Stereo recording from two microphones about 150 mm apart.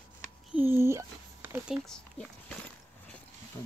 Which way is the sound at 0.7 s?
15° right (ahead or behind).